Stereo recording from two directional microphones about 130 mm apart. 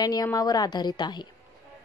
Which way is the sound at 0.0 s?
30° left (ahead or behind).